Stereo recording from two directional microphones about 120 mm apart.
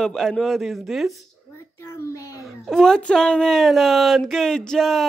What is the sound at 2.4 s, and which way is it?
Speech, 5° left (ahead or behind).